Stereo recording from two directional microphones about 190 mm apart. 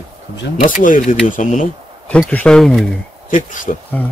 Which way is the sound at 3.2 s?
45° left (ahead or behind).